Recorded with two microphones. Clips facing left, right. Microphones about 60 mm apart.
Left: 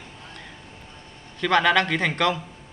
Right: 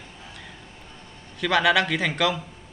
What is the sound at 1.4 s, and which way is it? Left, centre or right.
A man's voice, centre.